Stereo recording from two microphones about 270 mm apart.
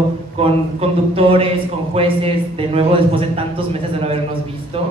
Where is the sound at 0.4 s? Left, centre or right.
Right.